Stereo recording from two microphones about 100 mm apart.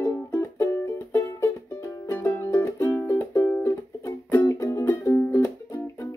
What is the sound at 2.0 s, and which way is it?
Music, 25° left (ahead or behind).